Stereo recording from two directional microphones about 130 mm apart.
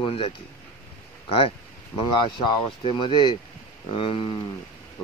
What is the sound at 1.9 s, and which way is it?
A man's voice, 35° left (ahead or behind).